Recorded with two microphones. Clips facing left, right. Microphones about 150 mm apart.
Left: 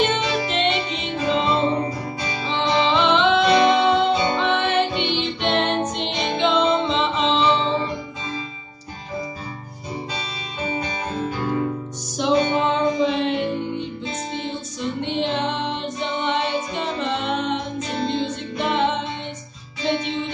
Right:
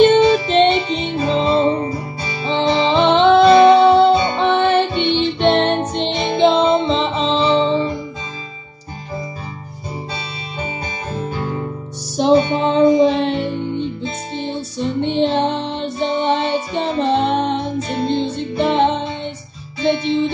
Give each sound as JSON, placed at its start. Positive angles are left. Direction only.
{"t": 0.0, "sound": "music", "side_deg": -30}
{"t": 12.2, "sound": "music", "side_deg": -35}
{"t": 14.8, "sound": "music", "side_deg": -35}